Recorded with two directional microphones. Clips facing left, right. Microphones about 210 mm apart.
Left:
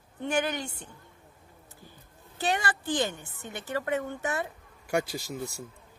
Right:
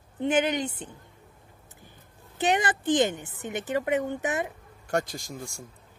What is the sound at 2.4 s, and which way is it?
Speech, 20° right (ahead or behind).